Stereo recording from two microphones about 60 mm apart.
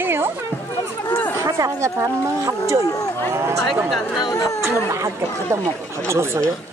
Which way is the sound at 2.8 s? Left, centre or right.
Left.